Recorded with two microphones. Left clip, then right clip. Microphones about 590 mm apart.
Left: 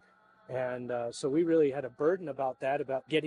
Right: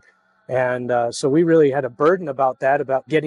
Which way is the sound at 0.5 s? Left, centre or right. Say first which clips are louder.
Right 14 dB; right.